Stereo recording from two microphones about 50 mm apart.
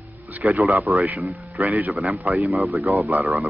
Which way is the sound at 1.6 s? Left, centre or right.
Right.